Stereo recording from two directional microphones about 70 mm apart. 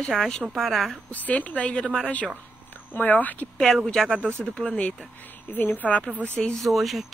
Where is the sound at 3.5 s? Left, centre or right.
Centre.